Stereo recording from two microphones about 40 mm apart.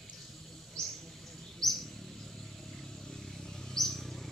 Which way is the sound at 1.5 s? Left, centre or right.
Centre.